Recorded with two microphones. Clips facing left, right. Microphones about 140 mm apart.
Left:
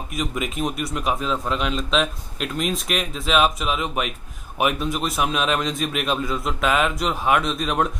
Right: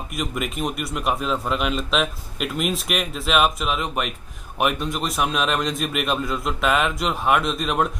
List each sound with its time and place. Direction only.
0.1 s a man's voice: centre (ahead or behind)